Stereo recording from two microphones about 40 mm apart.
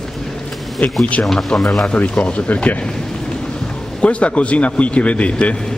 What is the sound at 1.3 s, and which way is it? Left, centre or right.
Speech, centre.